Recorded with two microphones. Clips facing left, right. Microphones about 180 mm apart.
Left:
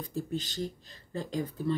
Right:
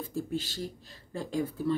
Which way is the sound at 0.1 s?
10° right (ahead or behind).